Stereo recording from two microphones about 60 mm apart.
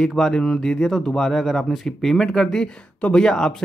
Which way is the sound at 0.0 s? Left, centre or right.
Centre.